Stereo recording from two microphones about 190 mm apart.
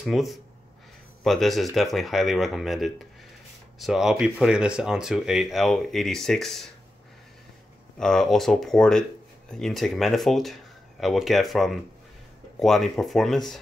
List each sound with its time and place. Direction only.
0.0 s speech: centre (ahead or behind)
8.0 s speech: centre (ahead or behind)